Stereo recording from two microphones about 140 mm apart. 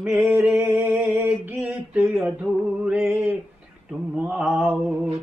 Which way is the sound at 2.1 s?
5° right (ahead or behind).